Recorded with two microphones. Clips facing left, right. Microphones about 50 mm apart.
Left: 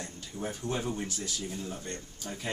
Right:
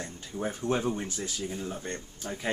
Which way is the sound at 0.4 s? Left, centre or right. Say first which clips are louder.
Right 5 dB; right.